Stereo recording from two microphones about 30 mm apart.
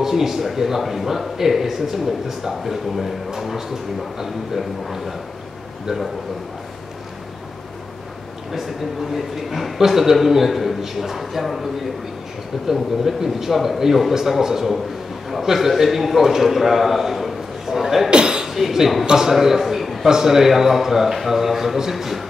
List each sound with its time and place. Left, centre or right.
0.0 s a man's voice: centre
8.5 s a man's voice: centre
12.7 s a man's voice: centre
18.1 s a sound: right
18.4 s a man's voice: centre
20.1 s a man's voice: centre